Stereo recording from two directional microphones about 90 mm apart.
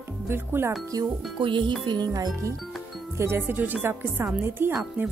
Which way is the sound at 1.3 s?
65° right (ahead or behind).